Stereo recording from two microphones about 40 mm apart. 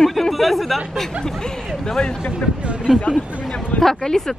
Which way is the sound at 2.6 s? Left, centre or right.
Right.